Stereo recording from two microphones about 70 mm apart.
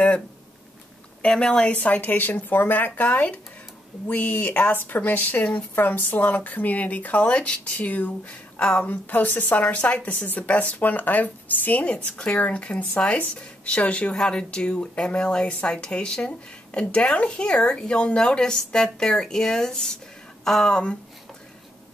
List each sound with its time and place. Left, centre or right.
1.2 s speech: centre
8.8 s speech: left